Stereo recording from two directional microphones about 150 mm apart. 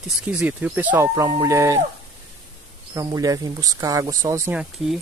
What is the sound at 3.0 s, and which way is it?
Speech, 25° right (ahead or behind).